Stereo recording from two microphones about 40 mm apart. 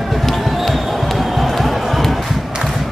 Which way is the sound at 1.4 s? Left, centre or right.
Centre.